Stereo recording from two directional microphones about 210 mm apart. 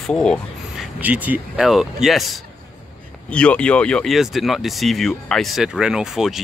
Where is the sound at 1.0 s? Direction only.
10° right (ahead or behind).